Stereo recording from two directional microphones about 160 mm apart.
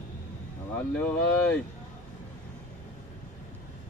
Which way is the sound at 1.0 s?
10° left (ahead or behind).